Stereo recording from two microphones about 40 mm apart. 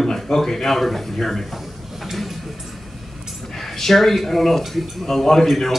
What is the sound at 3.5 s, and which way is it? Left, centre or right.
A man's voice, centre.